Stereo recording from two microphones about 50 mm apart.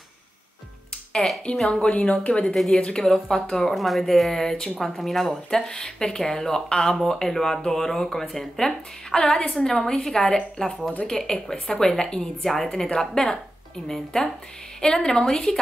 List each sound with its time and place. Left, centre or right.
1.1 s speech: centre
1.7 s speech: left; by 5.6 s centre
5.7 s speech: centre
9.2 s speech: left
9.5 s speech: centre